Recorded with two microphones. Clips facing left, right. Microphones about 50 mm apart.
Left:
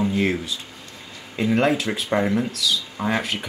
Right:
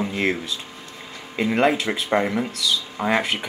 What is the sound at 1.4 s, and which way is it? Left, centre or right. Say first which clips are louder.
Speech: even; right.